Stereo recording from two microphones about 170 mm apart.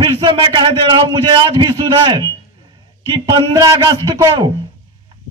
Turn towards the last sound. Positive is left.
turn(degrees=-25)  # may be behind; listen again after turning